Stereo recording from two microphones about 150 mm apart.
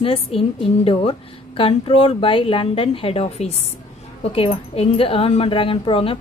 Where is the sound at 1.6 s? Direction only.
40° left (ahead or behind).